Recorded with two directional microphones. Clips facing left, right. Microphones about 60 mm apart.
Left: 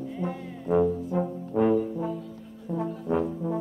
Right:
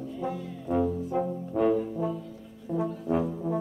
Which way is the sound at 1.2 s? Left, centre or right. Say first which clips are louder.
Left 2 dB; centre.